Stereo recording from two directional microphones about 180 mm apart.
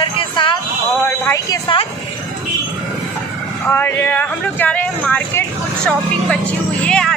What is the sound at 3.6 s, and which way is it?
Speech, 10° left (ahead or behind).